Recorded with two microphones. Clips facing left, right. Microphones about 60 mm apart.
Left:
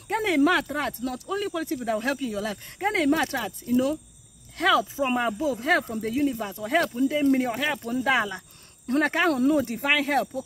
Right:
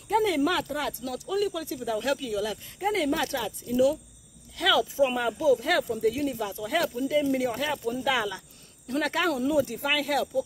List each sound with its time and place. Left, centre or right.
0.1 s speech: left
2.8 s speech: left